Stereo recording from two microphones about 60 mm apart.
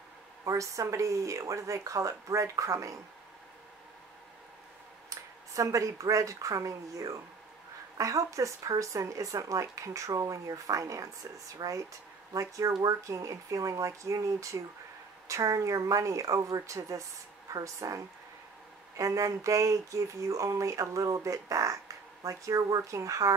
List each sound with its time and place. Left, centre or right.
0.5 s speech: right
5.5 s speech: right
11.6 s speech: right
12.3 s speech: right